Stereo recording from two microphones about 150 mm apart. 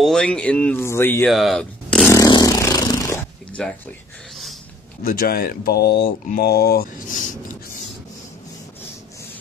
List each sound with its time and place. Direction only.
0.0 s speech: 5° left (ahead or behind)
1.2 s speech: centre (ahead or behind)
2.0 s a sound: 25° left (ahead or behind)
3.6 s speech: 5° left (ahead or behind)
5.0 s speech: 70° left (ahead or behind)